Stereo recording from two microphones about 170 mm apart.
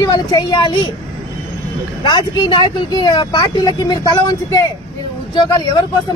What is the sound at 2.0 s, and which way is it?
Speech, 25° left (ahead or behind).